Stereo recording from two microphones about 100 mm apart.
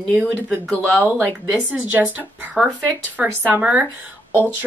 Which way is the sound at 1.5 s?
10° right (ahead or behind).